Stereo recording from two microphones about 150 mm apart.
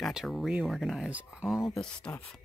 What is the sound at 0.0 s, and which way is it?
Speech, centre (ahead or behind).